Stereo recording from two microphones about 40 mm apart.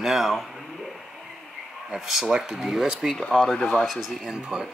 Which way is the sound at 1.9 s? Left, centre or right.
Centre.